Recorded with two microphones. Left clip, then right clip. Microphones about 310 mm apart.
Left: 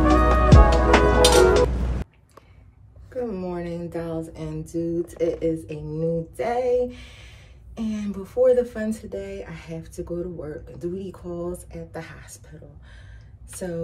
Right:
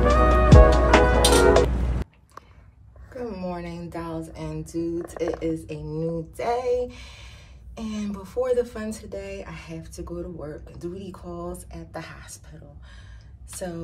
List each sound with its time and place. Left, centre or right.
0.0 s music: centre
3.2 s speech: centre